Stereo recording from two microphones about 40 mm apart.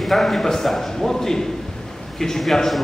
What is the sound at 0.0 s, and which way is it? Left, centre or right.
A man's voice, centre.